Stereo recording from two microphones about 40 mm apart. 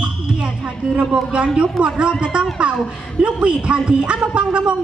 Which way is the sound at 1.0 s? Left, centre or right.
Right.